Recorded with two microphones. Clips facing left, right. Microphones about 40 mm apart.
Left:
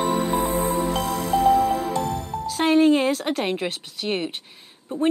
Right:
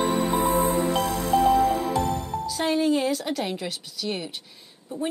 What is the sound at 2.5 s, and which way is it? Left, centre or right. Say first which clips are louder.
Speech: left 6 dB; left.